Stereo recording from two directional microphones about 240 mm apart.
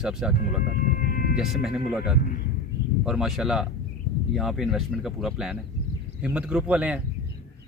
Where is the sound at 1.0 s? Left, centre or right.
Left.